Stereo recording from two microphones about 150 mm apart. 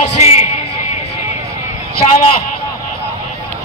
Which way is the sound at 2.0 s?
45° left (ahead or behind).